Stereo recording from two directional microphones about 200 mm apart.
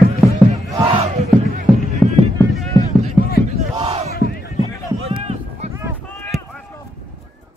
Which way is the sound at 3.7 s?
30° right (ahead or behind).